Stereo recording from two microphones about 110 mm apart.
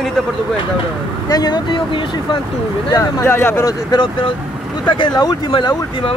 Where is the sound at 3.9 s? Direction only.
45° left (ahead or behind).